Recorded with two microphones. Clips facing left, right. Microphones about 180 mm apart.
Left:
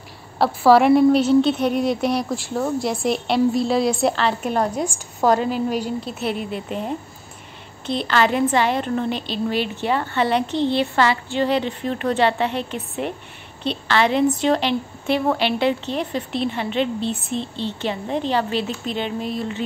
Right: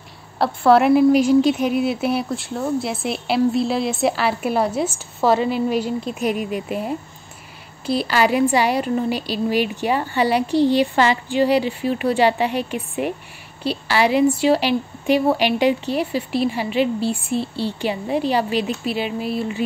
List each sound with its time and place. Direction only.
0.4 s a woman's voice: centre (ahead or behind)
1.1 s speech: 30° left (ahead or behind)
1.5 s a woman's voice: 5° right (ahead or behind)
5.5 s a woman's voice: 40° left (ahead or behind)
6.1 s a woman's voice: 10° right (ahead or behind)